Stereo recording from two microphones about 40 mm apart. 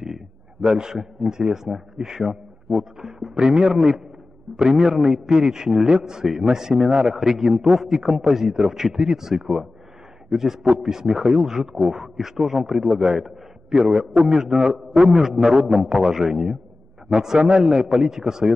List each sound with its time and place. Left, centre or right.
0.0 s a man's voice: centre